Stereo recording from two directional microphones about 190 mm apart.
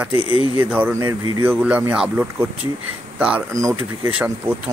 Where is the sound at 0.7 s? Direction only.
10° right (ahead or behind).